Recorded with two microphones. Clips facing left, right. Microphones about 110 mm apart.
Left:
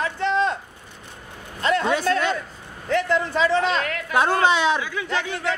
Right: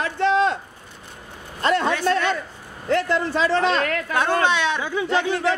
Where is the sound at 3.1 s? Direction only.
35° right (ahead or behind).